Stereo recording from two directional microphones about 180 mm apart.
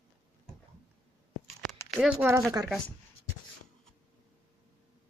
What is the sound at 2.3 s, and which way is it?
Speech, 15° right (ahead or behind).